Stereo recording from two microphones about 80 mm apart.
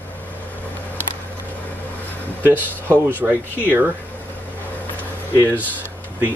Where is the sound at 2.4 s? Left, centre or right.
Left.